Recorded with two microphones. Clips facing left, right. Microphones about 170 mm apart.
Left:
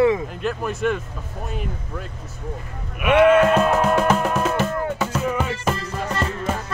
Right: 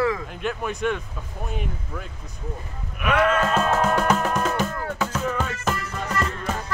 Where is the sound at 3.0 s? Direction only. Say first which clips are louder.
Left 7 dB; 10° left (ahead or behind).